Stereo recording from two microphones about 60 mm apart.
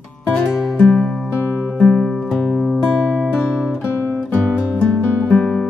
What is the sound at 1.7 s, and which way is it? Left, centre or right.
Music, centre.